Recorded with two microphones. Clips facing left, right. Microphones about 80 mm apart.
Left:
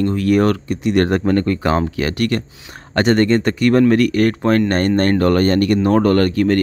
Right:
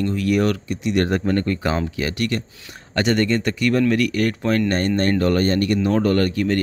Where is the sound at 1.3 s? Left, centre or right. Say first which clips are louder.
Left 5 dB; left.